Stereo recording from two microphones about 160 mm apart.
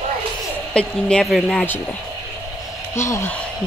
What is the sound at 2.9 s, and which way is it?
Speech, 15° left (ahead or behind).